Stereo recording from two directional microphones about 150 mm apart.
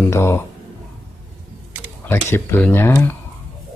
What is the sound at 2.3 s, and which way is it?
Speech, 15° left (ahead or behind).